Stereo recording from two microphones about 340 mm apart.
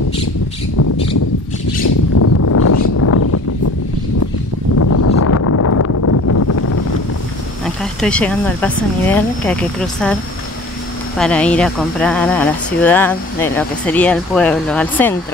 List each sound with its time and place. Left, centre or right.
2.1 s a sound: left
4.7 s vehicle: left
7.6 s speech: centre
11.1 s speech: centre